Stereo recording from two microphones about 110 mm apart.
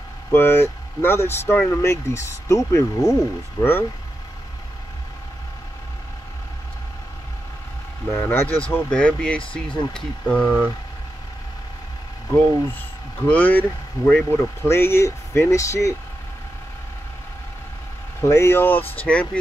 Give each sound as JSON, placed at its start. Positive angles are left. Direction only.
{"t": 0.3, "sound": "speech", "side_deg": 25}
{"t": 8.1, "sound": "speech", "side_deg": 20}
{"t": 13.3, "sound": "speech", "side_deg": 15}
{"t": 18.2, "sound": "speech", "side_deg": 25}